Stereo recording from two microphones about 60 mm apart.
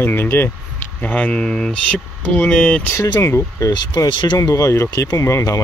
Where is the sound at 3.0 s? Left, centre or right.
Left.